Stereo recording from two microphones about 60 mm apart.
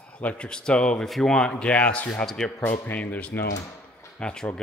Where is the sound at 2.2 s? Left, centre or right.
Centre.